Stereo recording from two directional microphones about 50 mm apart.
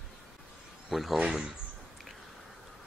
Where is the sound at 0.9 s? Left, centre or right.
Centre.